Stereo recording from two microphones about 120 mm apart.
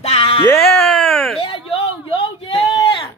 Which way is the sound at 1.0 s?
5° left (ahead or behind).